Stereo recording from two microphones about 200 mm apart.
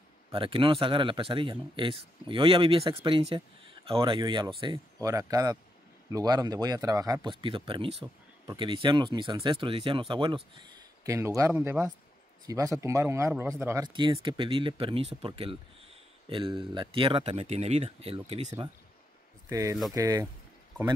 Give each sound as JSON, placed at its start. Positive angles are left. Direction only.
{"t": 0.3, "sound": "a man's voice", "side_deg": -25}
{"t": 19.5, "sound": "speech", "side_deg": -15}